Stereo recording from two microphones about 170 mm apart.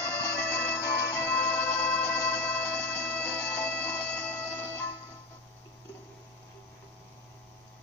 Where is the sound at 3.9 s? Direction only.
10° left (ahead or behind).